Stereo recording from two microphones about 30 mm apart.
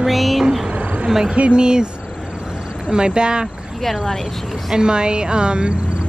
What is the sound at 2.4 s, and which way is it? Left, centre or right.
Vehicle, right.